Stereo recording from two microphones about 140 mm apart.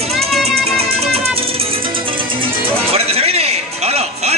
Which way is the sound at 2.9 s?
45° right (ahead or behind).